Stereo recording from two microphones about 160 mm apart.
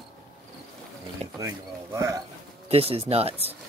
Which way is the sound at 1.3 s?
20° right (ahead or behind).